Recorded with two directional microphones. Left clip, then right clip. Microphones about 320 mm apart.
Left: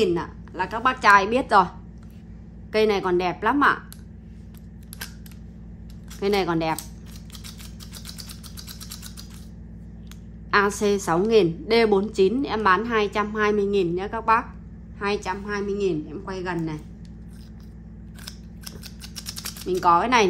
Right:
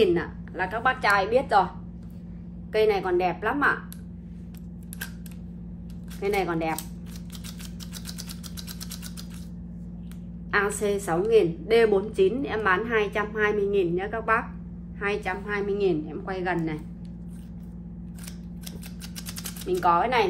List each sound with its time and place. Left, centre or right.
0.0 s a woman's voice: centre
2.7 s a woman's voice: centre
6.2 s a woman's voice: centre
10.5 s a woman's voice: centre
19.8 s speech: centre